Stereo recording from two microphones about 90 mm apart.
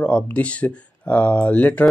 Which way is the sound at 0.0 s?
15° left (ahead or behind).